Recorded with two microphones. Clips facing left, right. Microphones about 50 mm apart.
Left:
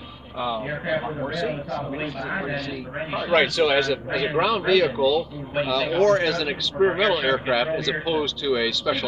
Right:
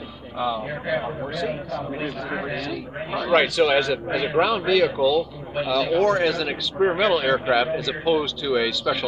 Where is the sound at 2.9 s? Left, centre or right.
Centre.